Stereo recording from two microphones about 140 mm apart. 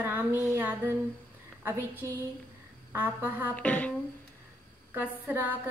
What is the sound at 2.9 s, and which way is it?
Speech, 15° right (ahead or behind).